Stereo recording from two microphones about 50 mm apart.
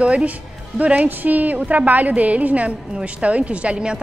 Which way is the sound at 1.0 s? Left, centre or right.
Right.